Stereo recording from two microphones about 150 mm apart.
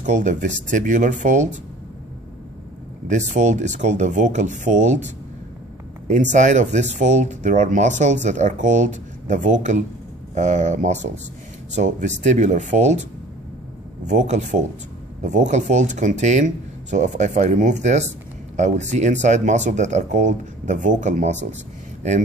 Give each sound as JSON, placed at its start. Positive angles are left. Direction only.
{"t": 0.0, "sound": "speech", "side_deg": -55}
{"t": 3.1, "sound": "speech", "side_deg": -50}
{"t": 14.0, "sound": "speech", "side_deg": -50}